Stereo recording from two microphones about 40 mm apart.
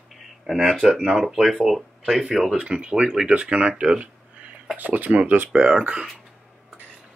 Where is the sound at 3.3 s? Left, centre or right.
Right.